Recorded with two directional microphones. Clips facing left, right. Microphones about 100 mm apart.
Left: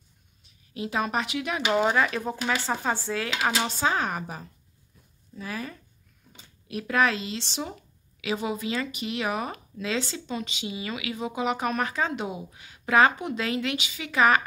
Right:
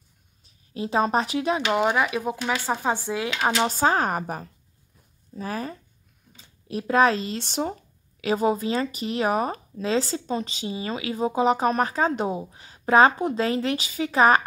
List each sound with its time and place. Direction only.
0.4 s speech: 30° right (ahead or behind)
1.7 s speech: 10° right (ahead or behind)
3.6 s speech: 45° right (ahead or behind)